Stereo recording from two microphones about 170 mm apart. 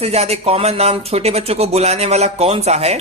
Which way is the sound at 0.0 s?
40° right (ahead or behind).